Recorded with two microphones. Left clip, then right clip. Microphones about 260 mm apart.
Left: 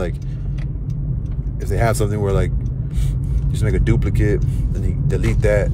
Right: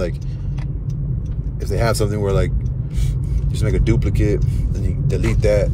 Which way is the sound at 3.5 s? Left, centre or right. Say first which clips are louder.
Right 1 dB; centre.